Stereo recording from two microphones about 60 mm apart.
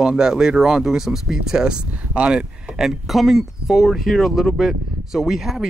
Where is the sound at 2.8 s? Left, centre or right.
Centre.